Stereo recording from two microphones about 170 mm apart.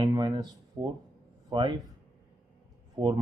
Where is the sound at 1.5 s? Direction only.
30° right (ahead or behind).